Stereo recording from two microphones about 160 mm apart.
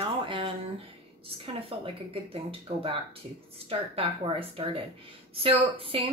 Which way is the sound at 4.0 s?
35° right (ahead or behind).